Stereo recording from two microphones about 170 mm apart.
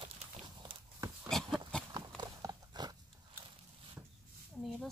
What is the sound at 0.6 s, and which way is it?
Walk, 25° right (ahead or behind).